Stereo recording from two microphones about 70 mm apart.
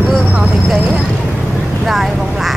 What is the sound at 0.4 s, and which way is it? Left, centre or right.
Vehicle, centre.